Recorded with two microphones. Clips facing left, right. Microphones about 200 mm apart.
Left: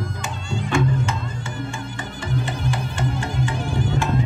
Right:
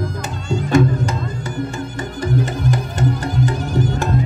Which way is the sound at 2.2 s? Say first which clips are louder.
Right 6 dB; 40° right (ahead or behind).